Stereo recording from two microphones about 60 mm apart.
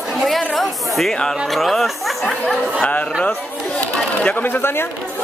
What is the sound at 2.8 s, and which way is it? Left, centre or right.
Speech, left.